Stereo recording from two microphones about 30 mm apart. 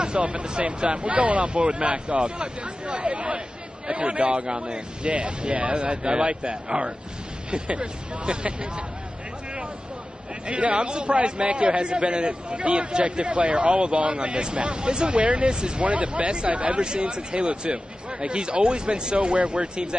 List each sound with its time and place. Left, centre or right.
0.0 s speech: right
10.4 s speech: right
11.1 s speech: right
11.4 s speech: right
15.1 s speech: right
17.1 s speech: right
19.1 s speech: right